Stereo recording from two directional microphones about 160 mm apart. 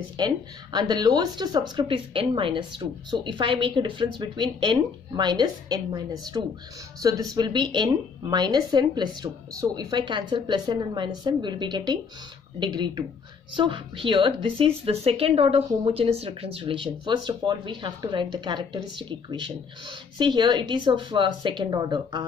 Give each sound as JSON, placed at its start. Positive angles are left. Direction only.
{"t": 0.2, "sound": "a woman's voice", "side_deg": -25}